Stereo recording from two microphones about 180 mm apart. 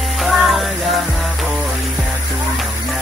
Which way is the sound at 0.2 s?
Centre (ahead or behind).